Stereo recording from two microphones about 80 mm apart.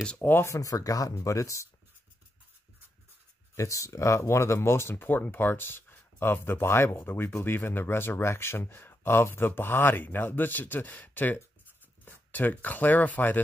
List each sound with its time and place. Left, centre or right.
0.2 s speech: left
0.5 s speech: left
3.5 s speech: left